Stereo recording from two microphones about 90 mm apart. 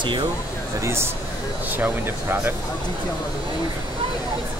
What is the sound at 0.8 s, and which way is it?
Speech, 30° right (ahead or behind).